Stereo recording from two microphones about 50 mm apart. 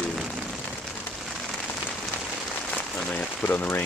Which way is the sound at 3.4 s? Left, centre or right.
Left.